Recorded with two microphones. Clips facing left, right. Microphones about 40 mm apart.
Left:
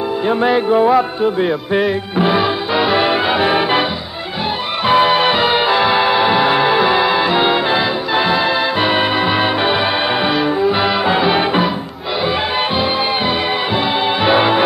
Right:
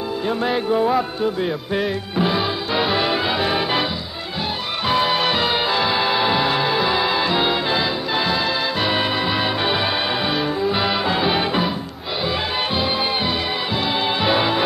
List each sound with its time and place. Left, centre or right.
0.6 s music: left
1.2 s speech: left
2.7 s music: centre
3.0 s music: left
4.8 s music: left
11.3 s music: centre